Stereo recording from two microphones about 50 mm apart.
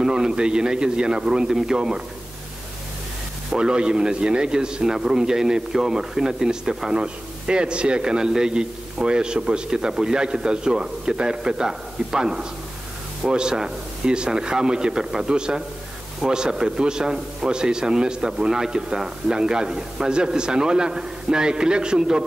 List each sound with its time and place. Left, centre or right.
0.0 s a man's voice: centre
3.5 s a man's voice: centre